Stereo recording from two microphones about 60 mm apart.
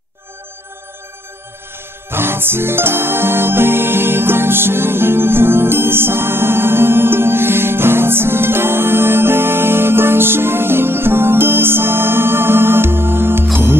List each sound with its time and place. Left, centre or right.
2.0 s music: right